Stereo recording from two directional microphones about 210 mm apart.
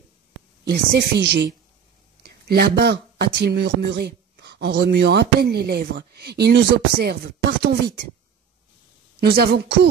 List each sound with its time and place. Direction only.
0.7 s speech: 55° right (ahead or behind)
9.2 s speech: 50° right (ahead or behind)